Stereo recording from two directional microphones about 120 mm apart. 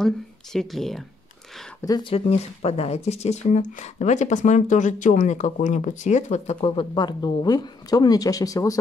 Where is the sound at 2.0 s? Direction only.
50° left (ahead or behind); by 6.5 s 75° left (ahead or behind).